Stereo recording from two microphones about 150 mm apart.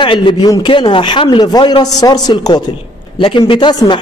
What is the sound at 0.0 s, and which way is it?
A man's voice, 35° left (ahead or behind).